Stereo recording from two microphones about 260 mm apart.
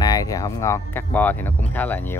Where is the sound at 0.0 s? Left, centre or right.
Centre.